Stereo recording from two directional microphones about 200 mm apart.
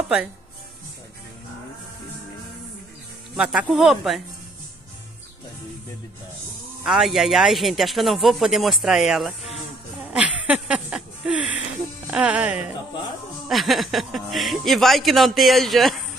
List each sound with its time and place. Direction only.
3.3 s a man's voice: 5° right (ahead or behind)
6.8 s a man's voice: centre (ahead or behind)